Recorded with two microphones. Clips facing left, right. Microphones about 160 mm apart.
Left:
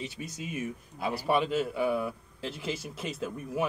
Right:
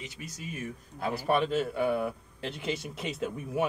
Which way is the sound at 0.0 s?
20° left (ahead or behind).